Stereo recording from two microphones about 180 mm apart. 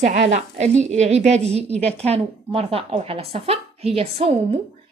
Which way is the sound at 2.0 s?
35° right (ahead or behind).